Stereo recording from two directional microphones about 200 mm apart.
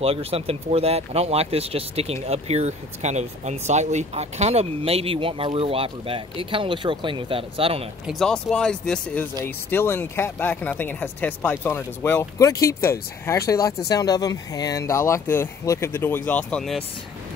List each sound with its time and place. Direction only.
0.0 s speech: 30° right (ahead or behind)
8.1 s speech: centre (ahead or behind)